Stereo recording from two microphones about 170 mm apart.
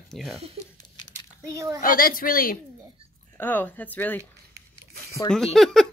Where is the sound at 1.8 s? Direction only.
55° left (ahead or behind).